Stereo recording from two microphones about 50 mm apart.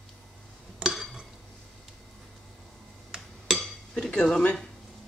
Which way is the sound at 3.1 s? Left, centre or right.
Centre.